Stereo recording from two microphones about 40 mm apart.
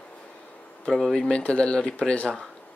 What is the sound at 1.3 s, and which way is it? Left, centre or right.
Speech, left.